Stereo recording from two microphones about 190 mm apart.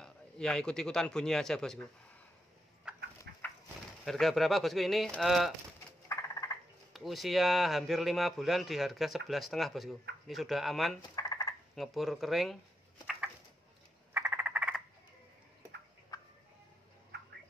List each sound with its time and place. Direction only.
0.0 s a man's voice: 5° left (ahead or behind)
2.9 s a sound: 5° right (ahead or behind)
3.3 s a sound: 60° right (ahead or behind)
4.0 s speech: centre (ahead or behind)
6.0 s frog: 15° left (ahead or behind)
6.9 s speech: centre (ahead or behind)
11.0 s frog: 20° left (ahead or behind)
11.7 s speech: centre (ahead or behind)
13.0 s a sound: centre (ahead or behind)
14.1 s frog: 10° right (ahead or behind)
16.1 s fowl: 15° left (ahead or behind)
17.1 s bird: 65° right (ahead or behind)